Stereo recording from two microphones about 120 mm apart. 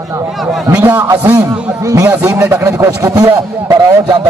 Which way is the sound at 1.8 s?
30° right (ahead or behind).